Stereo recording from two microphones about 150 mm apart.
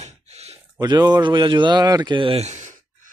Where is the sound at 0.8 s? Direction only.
25° right (ahead or behind).